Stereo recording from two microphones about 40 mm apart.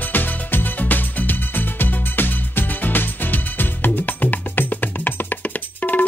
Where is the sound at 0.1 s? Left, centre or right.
Left.